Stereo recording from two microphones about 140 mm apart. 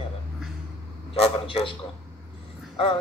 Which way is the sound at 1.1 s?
40° left (ahead or behind).